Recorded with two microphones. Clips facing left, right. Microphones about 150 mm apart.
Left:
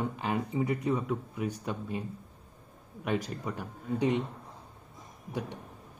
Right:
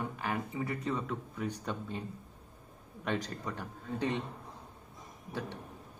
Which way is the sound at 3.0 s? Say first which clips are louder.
Left 3 dB; 10° left (ahead or behind).